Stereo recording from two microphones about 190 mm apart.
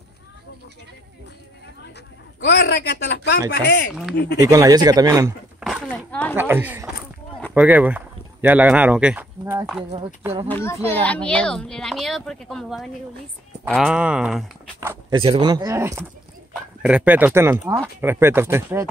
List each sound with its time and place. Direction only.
2.4 s speech: 65° left (ahead or behind)
4.4 s speech: 15° right (ahead or behind)
5.6 s a sound: centre (ahead or behind)
6.3 s speech: 10° right (ahead or behind)
10.5 s speech: 15° left (ahead or behind); by 15.1 s 10° right (ahead or behind)
15.1 s speech: 25° right (ahead or behind)